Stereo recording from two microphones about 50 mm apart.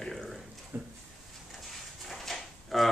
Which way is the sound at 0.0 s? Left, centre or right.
Centre.